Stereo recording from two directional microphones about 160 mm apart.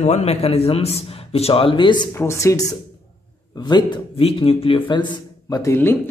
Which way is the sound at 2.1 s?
15° left (ahead or behind).